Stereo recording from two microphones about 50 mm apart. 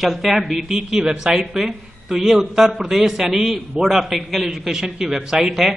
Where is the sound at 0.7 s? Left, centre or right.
Centre.